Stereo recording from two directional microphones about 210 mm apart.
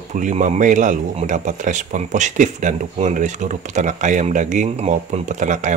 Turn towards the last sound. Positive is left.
turn(degrees=-35)  # may be behind; listen again after turning